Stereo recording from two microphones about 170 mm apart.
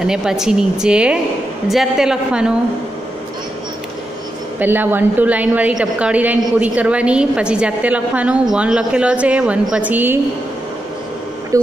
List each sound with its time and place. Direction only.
0.0 s speech: 5° right (ahead or behind)
4.6 s a woman's voice: 10° right (ahead or behind)
11.5 s speech: 20° right (ahead or behind)